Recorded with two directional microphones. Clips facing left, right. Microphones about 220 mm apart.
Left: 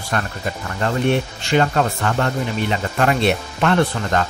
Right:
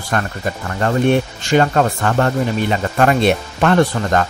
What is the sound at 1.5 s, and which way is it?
Speech, 45° right (ahead or behind).